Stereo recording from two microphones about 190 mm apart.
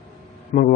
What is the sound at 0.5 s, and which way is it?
Speech, 40° left (ahead or behind).